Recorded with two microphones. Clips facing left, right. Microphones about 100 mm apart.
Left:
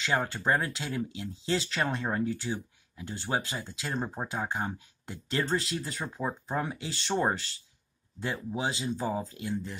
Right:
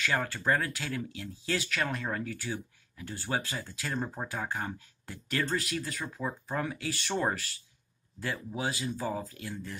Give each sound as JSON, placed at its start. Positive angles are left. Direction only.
{"t": 0.0, "sound": "speech", "side_deg": 20}